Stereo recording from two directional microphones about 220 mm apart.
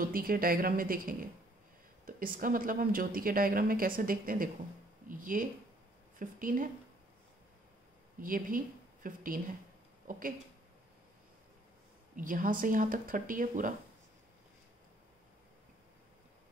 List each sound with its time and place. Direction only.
0.0 s speech: 40° right (ahead or behind)
8.2 s speech: 40° right (ahead or behind)
12.2 s speech: 40° right (ahead or behind)